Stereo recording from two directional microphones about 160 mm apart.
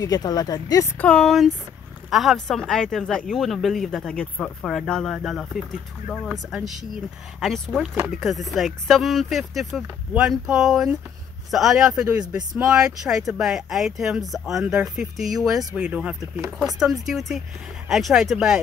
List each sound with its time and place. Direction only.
0.0 s speech: 25° left (ahead or behind)
0.9 s speech: 5° left (ahead or behind)